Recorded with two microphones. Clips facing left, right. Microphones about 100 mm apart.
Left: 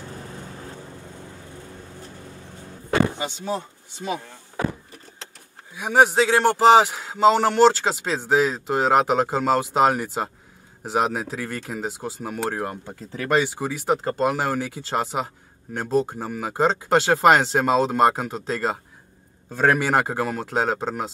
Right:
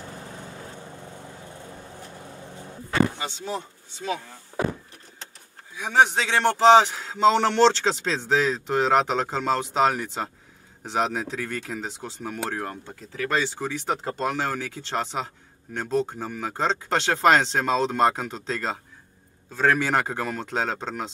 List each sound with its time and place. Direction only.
3.2 s speech: 15° left (ahead or behind)
5.8 s speech: 10° left (ahead or behind)
19.5 s a man's voice: 20° left (ahead or behind)
19.8 s speech: 10° left (ahead or behind)